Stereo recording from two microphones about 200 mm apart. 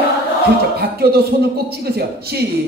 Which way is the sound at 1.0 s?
50° right (ahead or behind).